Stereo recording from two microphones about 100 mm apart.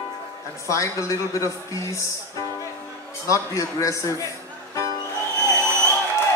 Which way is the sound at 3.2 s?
35° left (ahead or behind).